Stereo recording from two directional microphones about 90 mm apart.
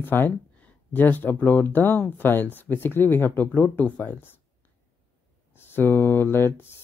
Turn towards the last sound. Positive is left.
turn(degrees=25)  # may be behind; listen again after turning